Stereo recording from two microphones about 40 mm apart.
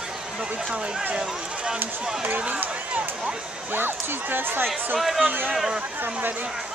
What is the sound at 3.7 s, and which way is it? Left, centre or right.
Speech, right.